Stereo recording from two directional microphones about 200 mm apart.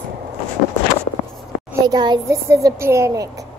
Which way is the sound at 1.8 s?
20° right (ahead or behind).